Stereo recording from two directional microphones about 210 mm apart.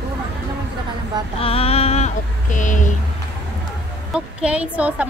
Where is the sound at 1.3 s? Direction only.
25° left (ahead or behind).